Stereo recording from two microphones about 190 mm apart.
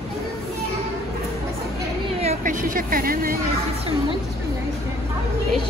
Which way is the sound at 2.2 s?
40° right (ahead or behind).